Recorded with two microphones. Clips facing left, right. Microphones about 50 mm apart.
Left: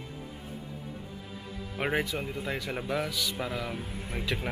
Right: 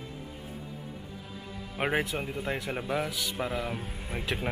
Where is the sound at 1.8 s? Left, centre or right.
Centre.